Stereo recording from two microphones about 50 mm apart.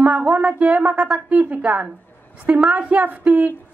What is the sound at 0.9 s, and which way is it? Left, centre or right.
A woman's voice, right.